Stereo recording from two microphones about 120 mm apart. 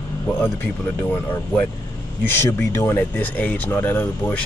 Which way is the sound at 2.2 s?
20° left (ahead or behind).